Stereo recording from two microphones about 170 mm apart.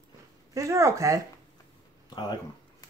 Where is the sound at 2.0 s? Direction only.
25° left (ahead or behind).